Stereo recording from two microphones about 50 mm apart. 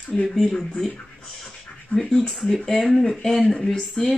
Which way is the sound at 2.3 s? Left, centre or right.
Centre.